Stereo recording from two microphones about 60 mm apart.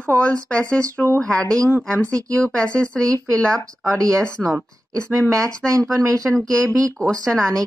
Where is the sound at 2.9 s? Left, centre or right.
Right.